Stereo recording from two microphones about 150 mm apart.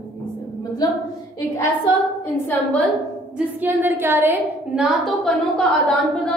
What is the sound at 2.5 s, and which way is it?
Speech, 10° left (ahead or behind).